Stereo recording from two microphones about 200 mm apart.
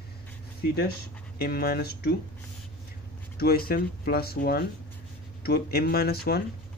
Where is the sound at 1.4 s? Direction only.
50° left (ahead or behind).